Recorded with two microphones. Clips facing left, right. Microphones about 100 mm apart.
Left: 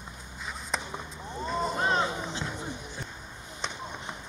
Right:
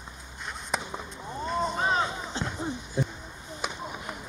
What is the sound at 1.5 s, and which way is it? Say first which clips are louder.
Vehicle: right 1 dB; centre (ahead or behind).